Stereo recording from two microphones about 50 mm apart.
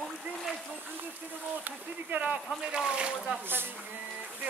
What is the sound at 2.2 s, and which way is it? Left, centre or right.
Speech, centre.